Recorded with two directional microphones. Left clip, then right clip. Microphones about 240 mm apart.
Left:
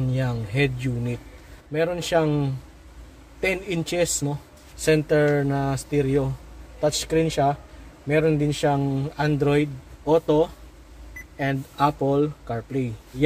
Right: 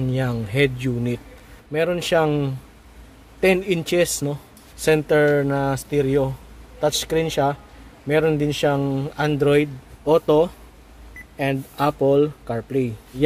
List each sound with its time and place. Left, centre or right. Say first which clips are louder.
0.1 s speech: right 5 dB; right